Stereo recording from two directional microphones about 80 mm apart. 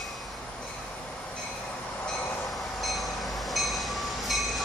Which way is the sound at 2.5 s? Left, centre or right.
Centre.